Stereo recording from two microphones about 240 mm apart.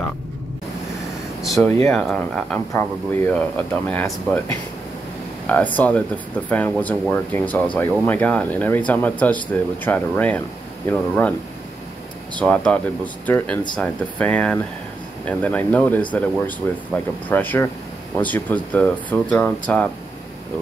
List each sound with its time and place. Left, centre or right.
1.4 s speech: centre
5.5 s speech: centre
12.4 s speech: centre